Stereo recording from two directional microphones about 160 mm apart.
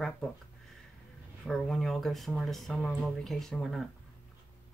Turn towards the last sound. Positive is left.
turn(degrees=0)  # may be behind; listen again after turning